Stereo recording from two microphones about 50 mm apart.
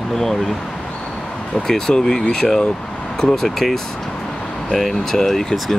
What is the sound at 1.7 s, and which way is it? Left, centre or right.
Speech, centre.